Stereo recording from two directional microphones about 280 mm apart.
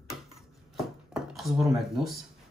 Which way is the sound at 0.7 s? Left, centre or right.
Centre.